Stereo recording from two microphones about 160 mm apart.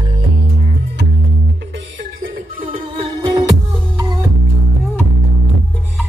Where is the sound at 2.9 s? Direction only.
35° right (ahead or behind).